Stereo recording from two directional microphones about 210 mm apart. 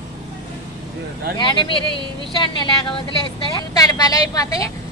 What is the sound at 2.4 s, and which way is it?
A woman's voice, 25° left (ahead or behind).